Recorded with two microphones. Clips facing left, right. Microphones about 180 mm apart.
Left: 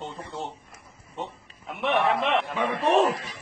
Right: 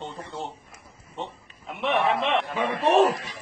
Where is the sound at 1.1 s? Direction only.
Centre (ahead or behind).